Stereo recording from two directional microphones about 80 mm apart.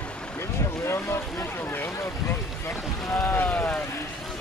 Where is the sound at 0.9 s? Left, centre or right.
Left.